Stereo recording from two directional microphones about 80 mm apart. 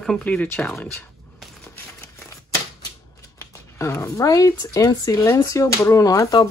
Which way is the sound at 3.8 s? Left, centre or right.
Left.